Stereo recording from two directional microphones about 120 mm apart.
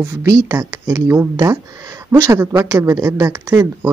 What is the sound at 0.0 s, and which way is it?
Speech, 25° right (ahead or behind).